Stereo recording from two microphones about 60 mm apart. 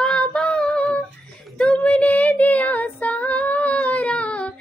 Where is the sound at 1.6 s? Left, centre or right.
Left.